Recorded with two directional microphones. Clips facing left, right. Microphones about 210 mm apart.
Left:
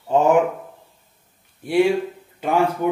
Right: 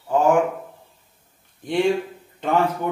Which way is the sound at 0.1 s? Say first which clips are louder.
Left 2 dB; 20° left (ahead or behind).